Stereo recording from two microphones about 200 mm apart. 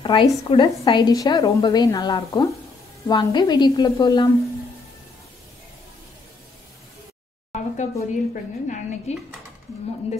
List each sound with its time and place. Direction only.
0.0 s a woman's voice: 25° left (ahead or behind)
7.5 s a woman's voice: 35° left (ahead or behind)